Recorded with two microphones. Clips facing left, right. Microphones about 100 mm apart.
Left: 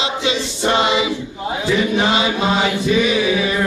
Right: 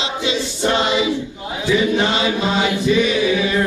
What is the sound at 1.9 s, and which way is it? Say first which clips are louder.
Chant: left 1 dB; 5° left (ahead or behind).